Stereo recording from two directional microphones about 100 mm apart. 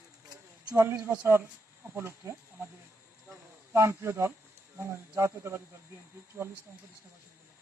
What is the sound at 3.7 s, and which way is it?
Speech, 25° right (ahead or behind).